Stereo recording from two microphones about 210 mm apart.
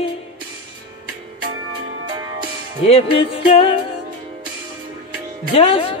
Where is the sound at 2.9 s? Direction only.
25° left (ahead or behind).